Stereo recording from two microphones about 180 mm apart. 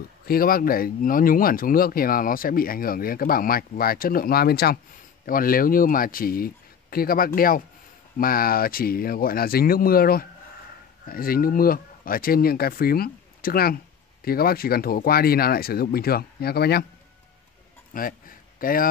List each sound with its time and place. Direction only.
0.3 s speech: 55° left (ahead or behind)
17.9 s speech: 50° left (ahead or behind)